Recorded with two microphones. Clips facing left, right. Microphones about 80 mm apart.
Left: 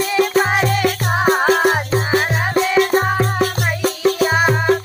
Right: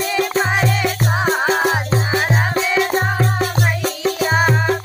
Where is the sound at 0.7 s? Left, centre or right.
Left.